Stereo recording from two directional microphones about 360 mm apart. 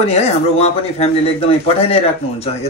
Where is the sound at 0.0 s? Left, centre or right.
Centre.